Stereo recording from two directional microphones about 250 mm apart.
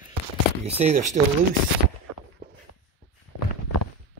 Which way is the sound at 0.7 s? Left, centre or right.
Right.